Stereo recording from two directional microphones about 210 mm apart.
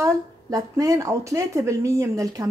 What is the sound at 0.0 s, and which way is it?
A woman's voice, 15° right (ahead or behind).